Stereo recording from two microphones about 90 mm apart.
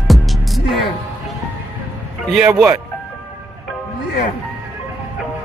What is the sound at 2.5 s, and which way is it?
Speech, 20° right (ahead or behind).